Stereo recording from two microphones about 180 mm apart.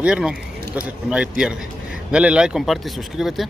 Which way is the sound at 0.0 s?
5° right (ahead or behind).